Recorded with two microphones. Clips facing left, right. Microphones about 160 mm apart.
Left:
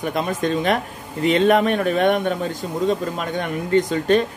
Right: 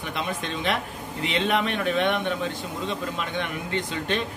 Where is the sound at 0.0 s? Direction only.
45° left (ahead or behind).